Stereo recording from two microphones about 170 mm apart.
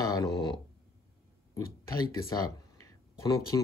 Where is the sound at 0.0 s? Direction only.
20° left (ahead or behind).